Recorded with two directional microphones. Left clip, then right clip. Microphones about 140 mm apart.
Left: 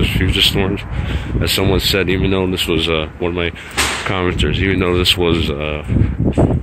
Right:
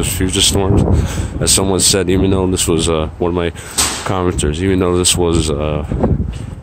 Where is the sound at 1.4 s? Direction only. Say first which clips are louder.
Right 2 dB; 35° right (ahead or behind).